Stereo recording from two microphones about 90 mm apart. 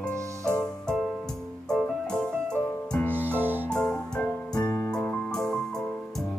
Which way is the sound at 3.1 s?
20° right (ahead or behind).